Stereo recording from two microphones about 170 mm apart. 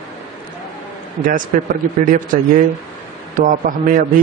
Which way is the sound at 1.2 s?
50° right (ahead or behind).